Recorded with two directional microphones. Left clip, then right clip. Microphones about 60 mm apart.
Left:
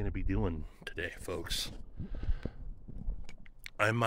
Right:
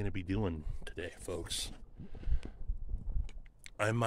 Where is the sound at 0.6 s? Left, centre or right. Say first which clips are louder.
Left 4 dB; left; by 2.3 s centre.